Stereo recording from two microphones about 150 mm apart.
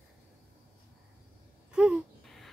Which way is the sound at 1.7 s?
5° right (ahead or behind).